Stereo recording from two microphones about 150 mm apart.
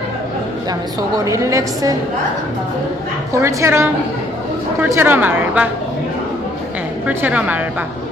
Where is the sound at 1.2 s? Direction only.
20° right (ahead or behind).